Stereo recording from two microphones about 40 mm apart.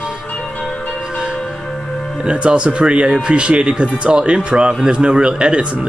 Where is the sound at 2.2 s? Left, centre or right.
Right.